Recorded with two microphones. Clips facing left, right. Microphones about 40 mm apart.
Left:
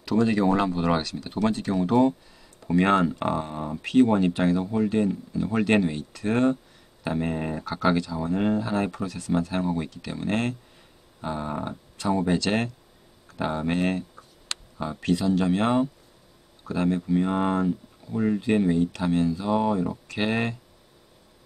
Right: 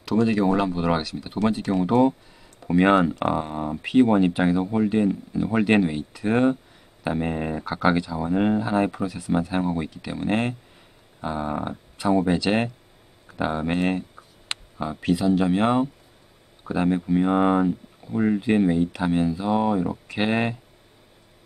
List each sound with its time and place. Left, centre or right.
0.1 s speech: centre